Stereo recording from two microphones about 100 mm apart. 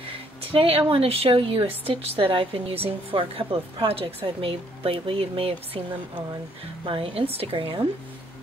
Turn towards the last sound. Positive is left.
turn(degrees=-60)  # may be behind; listen again after turning